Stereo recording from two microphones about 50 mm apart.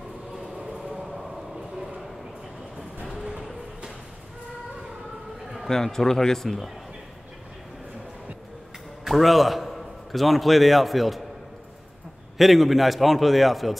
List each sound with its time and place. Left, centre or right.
0.4 s a sound: centre
1.0 s train: centre
3.1 s vehicle: centre
5.7 s speech: centre
9.0 s a man's voice: centre
12.4 s a man's voice: centre